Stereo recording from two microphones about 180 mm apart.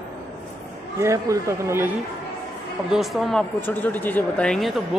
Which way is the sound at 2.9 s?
Centre (ahead or behind).